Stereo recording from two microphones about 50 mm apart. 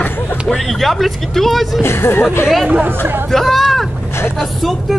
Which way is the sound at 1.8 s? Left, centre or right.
Left.